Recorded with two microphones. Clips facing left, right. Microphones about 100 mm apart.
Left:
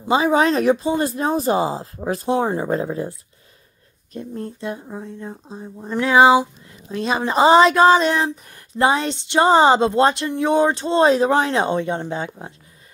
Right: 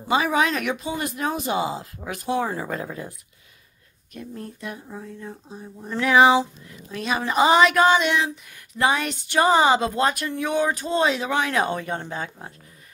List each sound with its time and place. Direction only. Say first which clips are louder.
0.1 s a woman's voice: left 5 dB; 30° left (ahead or behind)